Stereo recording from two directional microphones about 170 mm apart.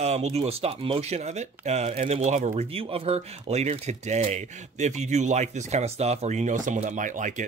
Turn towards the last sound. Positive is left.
turn(degrees=-50)  # may be behind; listen again after turning